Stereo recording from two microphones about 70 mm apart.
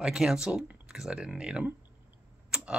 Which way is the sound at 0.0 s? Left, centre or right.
Centre.